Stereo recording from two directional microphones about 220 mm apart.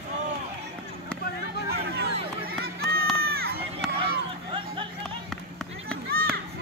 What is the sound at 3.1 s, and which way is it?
Crowd, 45° right (ahead or behind).